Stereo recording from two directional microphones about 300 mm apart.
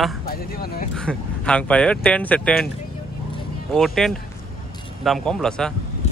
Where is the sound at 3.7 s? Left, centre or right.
Centre.